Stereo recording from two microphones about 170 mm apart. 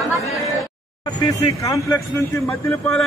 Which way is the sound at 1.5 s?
20° left (ahead or behind).